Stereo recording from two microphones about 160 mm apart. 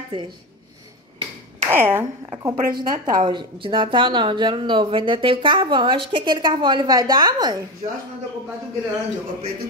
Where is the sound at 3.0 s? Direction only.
25° right (ahead or behind).